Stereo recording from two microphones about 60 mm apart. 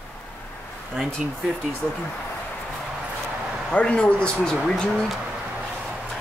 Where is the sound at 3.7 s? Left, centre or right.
Centre.